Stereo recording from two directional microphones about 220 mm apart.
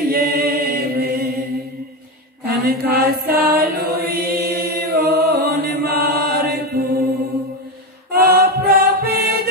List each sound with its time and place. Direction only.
0.1 s a capella: 45° right (ahead or behind)
2.4 s mantra: 45° right (ahead or behind)
3.5 s chant: 45° right (ahead or behind)
8.2 s music: 45° right (ahead or behind)